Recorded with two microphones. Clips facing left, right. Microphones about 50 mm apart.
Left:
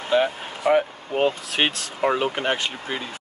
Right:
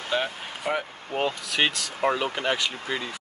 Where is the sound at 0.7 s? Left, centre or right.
Left.